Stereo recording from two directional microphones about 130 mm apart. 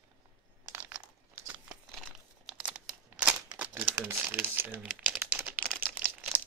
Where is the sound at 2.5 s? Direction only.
5° right (ahead or behind).